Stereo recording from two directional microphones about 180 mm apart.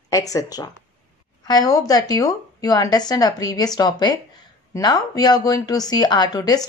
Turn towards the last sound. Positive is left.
turn(degrees=20)  # may be behind; listen again after turning